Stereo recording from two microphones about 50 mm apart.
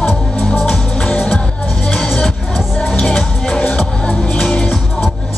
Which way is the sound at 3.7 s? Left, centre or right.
Left.